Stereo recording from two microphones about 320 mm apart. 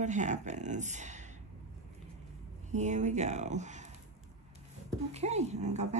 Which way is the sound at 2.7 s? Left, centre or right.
Right.